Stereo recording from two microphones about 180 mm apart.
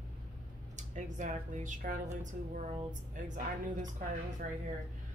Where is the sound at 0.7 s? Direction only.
40° right (ahead or behind).